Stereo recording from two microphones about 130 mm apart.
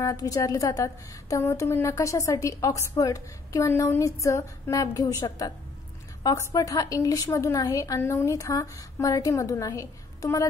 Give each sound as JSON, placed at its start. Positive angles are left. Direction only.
{"t": 0.0, "sound": "a woman's voice", "side_deg": 25}